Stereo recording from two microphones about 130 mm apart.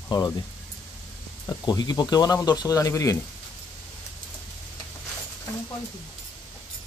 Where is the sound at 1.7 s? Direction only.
30° left (ahead or behind).